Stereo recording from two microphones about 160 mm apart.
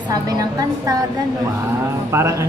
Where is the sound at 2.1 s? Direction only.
15° right (ahead or behind).